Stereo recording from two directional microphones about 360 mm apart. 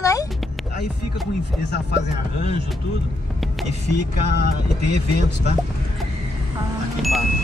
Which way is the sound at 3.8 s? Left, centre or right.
Left.